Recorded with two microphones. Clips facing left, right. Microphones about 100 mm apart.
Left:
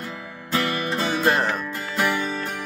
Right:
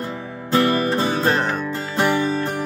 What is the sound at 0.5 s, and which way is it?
Music, 35° right (ahead or behind).